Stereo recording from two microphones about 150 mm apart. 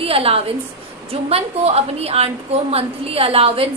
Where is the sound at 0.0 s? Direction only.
40° right (ahead or behind).